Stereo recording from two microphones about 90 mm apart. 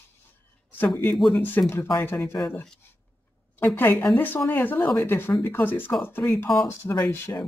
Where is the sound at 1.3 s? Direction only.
20° left (ahead or behind).